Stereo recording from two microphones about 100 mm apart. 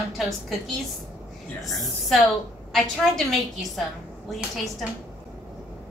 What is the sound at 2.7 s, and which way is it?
A woman's voice, centre (ahead or behind).